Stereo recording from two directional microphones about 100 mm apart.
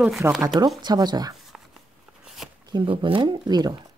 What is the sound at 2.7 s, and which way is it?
Speech, 50° right (ahead or behind).